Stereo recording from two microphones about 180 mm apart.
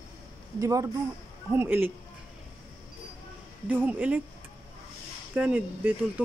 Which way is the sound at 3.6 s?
10° right (ahead or behind).